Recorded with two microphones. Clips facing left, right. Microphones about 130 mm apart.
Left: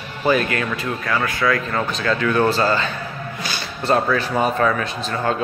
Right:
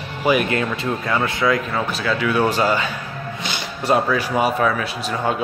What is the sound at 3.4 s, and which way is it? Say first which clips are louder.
Music: even; 20° right (ahead or behind).